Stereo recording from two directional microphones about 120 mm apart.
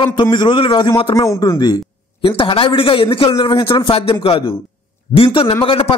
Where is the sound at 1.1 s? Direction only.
25° left (ahead or behind).